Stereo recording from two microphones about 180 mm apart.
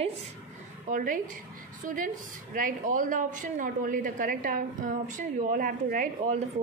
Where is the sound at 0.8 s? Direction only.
45° right (ahead or behind).